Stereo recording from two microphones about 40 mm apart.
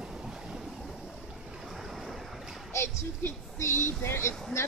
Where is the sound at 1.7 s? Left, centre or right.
Centre.